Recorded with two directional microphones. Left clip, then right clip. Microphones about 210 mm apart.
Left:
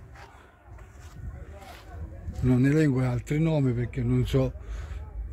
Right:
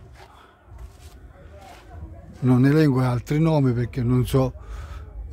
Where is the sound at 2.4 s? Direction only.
25° right (ahead or behind).